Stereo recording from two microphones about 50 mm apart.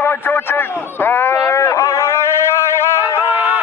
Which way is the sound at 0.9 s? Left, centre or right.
Left.